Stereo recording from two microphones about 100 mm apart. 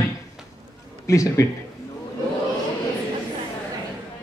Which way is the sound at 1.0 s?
35° left (ahead or behind).